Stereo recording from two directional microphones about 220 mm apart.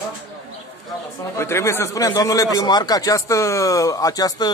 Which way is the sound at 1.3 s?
10° left (ahead or behind).